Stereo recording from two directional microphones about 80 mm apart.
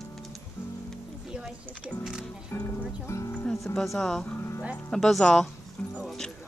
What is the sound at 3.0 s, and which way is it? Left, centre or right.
Music, left.